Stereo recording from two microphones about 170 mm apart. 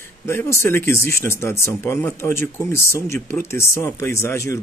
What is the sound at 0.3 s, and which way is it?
Speech, 15° left (ahead or behind).